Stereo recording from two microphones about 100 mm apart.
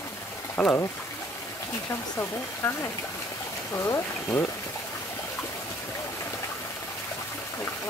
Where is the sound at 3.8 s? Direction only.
30° left (ahead or behind).